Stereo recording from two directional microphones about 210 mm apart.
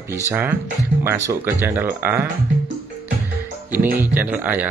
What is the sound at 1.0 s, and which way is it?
Speech, 10° right (ahead or behind).